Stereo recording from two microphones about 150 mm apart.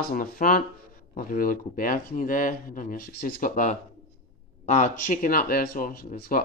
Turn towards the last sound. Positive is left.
turn(degrees=65)  # may be behind; listen again after turning